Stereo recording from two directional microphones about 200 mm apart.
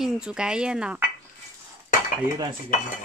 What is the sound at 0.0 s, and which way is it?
A woman's voice, 5° right (ahead or behind).